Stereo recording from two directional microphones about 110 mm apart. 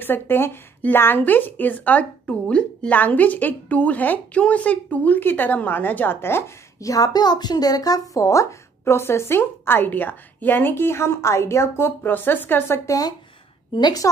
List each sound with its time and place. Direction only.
0.0 s a woman's voice: 20° left (ahead or behind); by 14.0 s 40° left (ahead or behind)